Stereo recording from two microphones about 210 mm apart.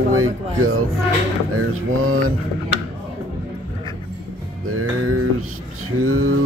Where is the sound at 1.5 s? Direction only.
90° right.